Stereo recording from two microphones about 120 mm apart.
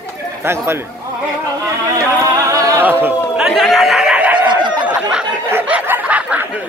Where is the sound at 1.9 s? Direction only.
25° right (ahead or behind).